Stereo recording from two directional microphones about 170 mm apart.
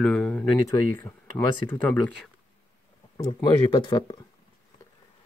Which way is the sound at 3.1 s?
25° left (ahead or behind).